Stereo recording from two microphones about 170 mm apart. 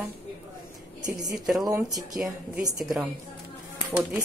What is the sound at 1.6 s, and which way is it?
Speech, 20° right (ahead or behind).